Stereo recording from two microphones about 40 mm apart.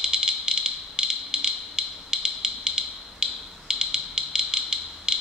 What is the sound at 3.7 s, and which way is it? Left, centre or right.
Music, centre.